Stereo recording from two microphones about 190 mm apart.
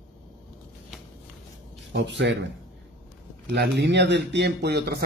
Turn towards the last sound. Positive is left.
turn(degrees=-60)  # may be behind; listen again after turning